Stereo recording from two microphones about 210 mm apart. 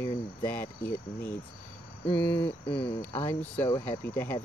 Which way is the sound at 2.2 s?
50° left (ahead or behind).